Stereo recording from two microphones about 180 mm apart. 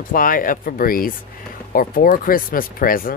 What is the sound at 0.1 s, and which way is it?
Speech, 50° left (ahead or behind).